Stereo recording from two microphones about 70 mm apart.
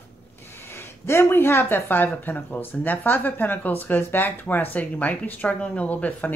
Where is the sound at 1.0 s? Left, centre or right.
Left.